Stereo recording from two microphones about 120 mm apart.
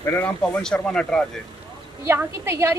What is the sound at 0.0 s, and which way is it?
Speech, 20° left (ahead or behind).